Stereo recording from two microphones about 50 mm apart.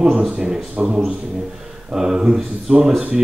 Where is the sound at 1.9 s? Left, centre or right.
Centre.